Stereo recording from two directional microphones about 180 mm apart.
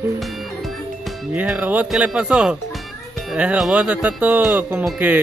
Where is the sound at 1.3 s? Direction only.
10° right (ahead or behind).